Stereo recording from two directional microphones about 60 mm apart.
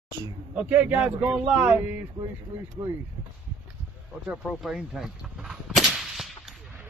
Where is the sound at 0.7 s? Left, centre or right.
Right.